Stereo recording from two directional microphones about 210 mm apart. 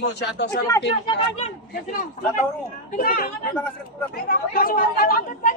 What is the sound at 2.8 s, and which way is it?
Speech, 40° left (ahead or behind).